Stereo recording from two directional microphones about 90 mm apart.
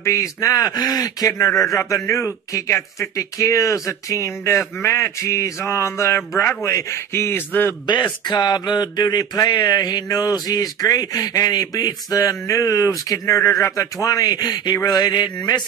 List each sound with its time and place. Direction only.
0.0 s a man's voice: 35° left (ahead or behind)
7.8 s speech: 55° left (ahead or behind); by 13.8 s 35° left (ahead or behind)
14.0 s speech: 45° left (ahead or behind)